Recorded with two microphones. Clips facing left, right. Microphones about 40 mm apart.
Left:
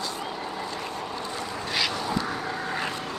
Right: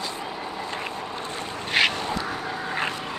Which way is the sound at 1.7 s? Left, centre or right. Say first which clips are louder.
Right 6 dB; right.